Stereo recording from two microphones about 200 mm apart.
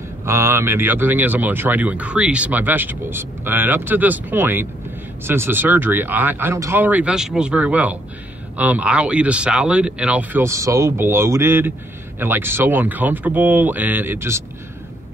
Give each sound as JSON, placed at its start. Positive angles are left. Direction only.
{"t": 0.2, "sound": "speech", "side_deg": -15}